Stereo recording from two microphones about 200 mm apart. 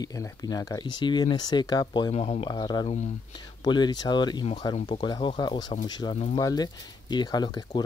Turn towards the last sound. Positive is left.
turn(degrees=20)  # may be behind; listen again after turning